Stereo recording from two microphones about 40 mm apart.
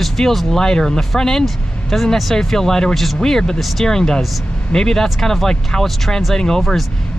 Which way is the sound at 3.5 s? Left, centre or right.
Centre.